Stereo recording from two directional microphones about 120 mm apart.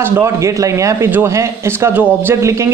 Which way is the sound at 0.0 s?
25° right (ahead or behind).